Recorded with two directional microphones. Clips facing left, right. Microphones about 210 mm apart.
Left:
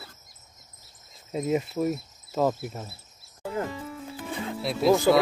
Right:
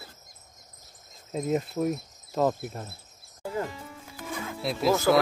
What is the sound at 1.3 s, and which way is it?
Speech, 5° left (ahead or behind).